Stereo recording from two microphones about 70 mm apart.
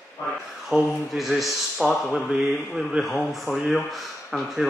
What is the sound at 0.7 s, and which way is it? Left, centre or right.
Speech, centre.